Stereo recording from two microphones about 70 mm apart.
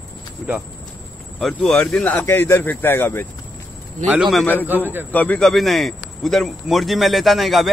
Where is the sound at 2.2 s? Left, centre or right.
Left.